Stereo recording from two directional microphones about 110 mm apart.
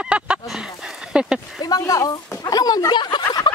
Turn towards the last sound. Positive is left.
turn(degrees=40)  # may be behind; listen again after turning